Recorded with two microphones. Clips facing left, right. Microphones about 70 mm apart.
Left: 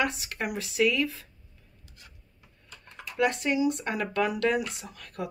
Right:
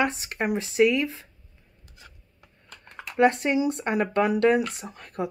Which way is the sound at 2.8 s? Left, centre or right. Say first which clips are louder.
Right 6 dB; right.